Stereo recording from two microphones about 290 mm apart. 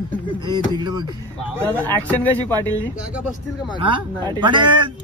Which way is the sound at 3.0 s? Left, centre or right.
Centre.